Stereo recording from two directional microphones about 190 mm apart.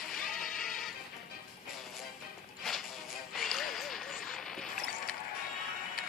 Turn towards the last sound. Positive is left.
turn(degrees=5)  # may be behind; listen again after turning